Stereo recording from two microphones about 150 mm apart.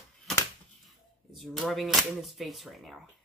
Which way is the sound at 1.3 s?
Centre (ahead or behind).